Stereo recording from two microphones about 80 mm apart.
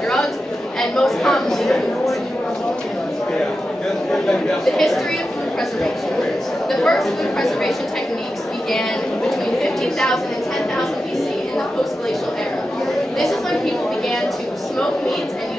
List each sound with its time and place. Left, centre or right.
0.7 s a sound: centre
4.3 s speech: centre
6.7 s speech: centre
9.6 s speech: centre